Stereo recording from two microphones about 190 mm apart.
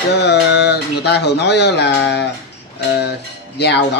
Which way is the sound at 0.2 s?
65° left (ahead or behind).